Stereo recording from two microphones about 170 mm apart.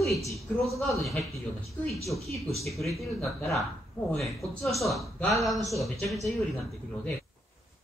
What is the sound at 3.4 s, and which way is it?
Speech, 15° left (ahead or behind).